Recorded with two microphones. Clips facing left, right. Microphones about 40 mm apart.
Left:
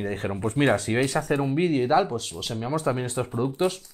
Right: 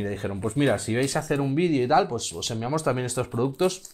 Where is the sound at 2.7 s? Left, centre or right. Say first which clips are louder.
Even; left.